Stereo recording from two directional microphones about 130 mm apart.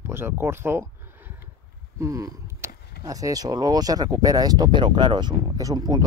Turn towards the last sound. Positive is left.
turn(degrees=-30)  # may be behind; listen again after turning